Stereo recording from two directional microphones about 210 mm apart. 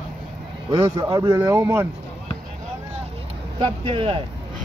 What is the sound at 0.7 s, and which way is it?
Speech, 15° right (ahead or behind).